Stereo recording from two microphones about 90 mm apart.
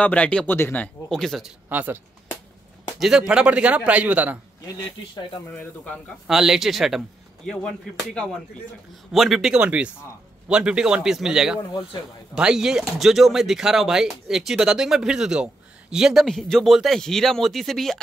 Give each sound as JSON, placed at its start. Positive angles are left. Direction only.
{"t": 0.0, "sound": "speech", "side_deg": 15}
{"t": 1.1, "sound": "speech", "side_deg": 5}
{"t": 1.7, "sound": "speech", "side_deg": -20}
{"t": 3.0, "sound": "a man's voice", "side_deg": -5}
{"t": 6.2, "sound": "a man's voice", "side_deg": -5}